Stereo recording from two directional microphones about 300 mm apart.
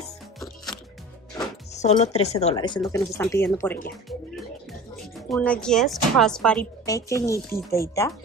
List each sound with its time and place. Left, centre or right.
1.7 s speech: left; by 3.8 s centre
5.3 s speech: centre